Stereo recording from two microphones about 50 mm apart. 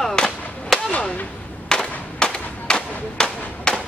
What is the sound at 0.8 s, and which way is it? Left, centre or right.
Whip, left.